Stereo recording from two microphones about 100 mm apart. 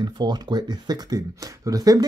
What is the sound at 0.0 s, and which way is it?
Speech, 45° right (ahead or behind).